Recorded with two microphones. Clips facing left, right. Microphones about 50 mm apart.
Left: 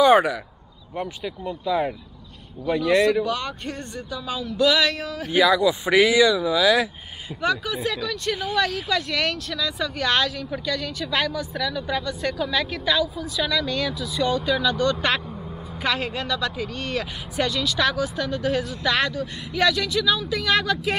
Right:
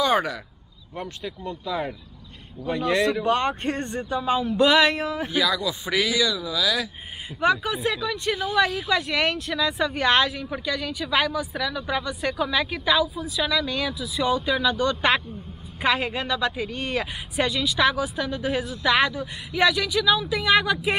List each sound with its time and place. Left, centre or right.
0.0 s speech: centre
3.3 s speech: right
5.3 s speech: left
7.3 s speech: right